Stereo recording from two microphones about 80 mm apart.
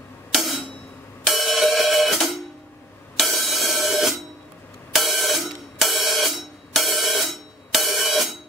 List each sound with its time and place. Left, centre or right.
0.3 s music: centre
4.9 s hi-hat: centre